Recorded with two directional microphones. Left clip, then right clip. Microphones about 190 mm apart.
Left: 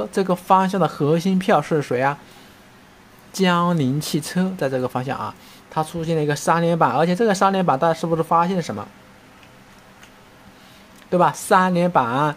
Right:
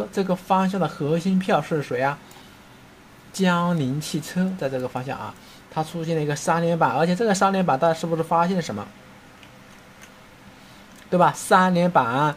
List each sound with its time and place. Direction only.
0.0 s speech: 20° left (ahead or behind)
3.3 s speech: 20° left (ahead or behind)
11.1 s speech: 10° left (ahead or behind)